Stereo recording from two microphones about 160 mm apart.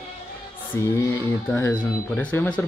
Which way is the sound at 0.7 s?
15° left (ahead or behind).